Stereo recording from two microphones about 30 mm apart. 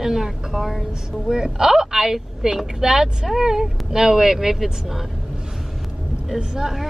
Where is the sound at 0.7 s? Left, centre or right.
Centre.